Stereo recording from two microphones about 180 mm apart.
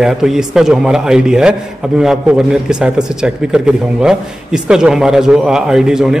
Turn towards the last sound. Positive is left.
turn(degrees=-5)  # may be behind; listen again after turning